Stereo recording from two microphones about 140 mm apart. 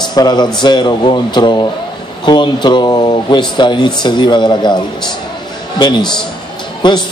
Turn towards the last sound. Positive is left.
turn(degrees=35)  # may be behind; listen again after turning